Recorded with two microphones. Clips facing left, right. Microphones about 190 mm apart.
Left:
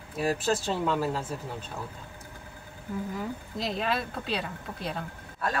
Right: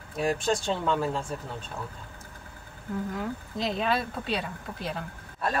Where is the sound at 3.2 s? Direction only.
Centre (ahead or behind).